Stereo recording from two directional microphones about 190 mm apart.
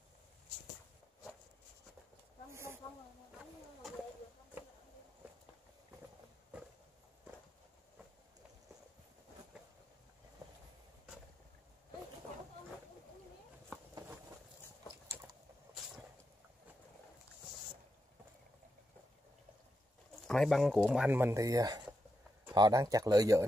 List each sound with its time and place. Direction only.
2.5 s snake: 15° right (ahead or behind)
20.2 s speech: centre (ahead or behind); by 23.4 s 20° right (ahead or behind)